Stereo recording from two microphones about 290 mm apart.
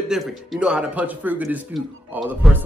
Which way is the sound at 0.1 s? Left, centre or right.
Centre.